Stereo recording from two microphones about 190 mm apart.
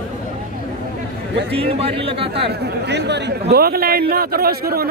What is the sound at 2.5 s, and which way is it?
A man's voice, 60° right (ahead or behind).